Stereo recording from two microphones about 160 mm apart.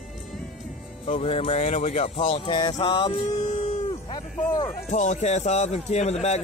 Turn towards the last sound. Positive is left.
turn(degrees=45)  # may be behind; listen again after turning